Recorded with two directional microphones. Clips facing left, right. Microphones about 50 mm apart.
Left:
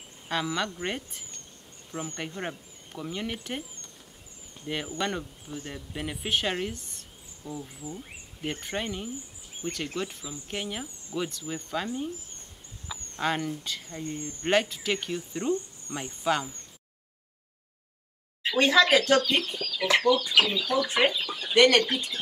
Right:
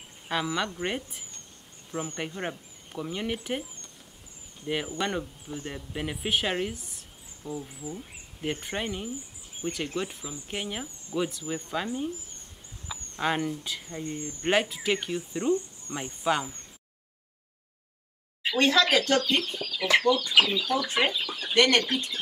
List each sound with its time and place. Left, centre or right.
0.3 s speech: centre
1.9 s speech: centre
4.6 s speech: centre
9.6 s speech: right
10.5 s speech: centre
12.9 s a sound: centre
13.2 s speech: centre
14.0 s speech: right
14.4 s speech: centre
18.5 s speech: centre